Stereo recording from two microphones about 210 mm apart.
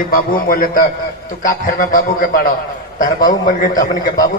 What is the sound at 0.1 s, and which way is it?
A man's voice, 45° left (ahead or behind).